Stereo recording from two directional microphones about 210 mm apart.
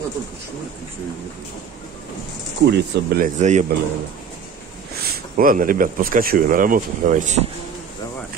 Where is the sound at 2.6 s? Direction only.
55° right (ahead or behind).